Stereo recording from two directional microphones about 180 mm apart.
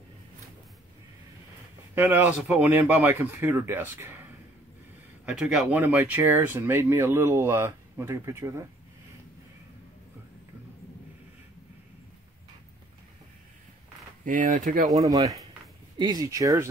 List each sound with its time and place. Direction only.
2.0 s speech: 10° right (ahead or behind)
5.2 s speech: 5° right (ahead or behind)
14.2 s speech: 50° right (ahead or behind)
15.0 s speech: 20° right (ahead or behind)